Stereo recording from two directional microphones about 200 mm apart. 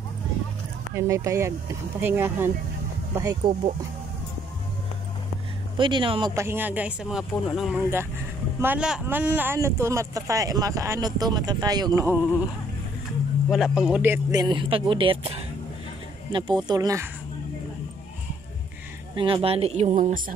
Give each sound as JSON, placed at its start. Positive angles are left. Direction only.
{"t": 0.9, "sound": "speech", "side_deg": -15}
{"t": 5.8, "sound": "speech", "side_deg": -25}
{"t": 6.3, "sound": "speech", "side_deg": -10}
{"t": 13.5, "sound": "speech", "side_deg": 0}
{"t": 19.1, "sound": "speech", "side_deg": -25}